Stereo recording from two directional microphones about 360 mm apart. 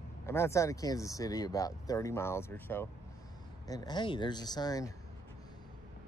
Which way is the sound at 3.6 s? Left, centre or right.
Centre.